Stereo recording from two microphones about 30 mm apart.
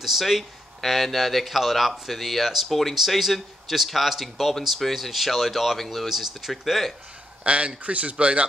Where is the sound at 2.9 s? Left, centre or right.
Centre.